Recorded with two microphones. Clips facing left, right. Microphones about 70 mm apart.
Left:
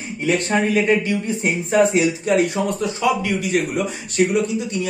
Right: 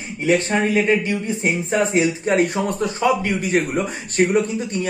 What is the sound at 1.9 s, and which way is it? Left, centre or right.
A man's voice, right.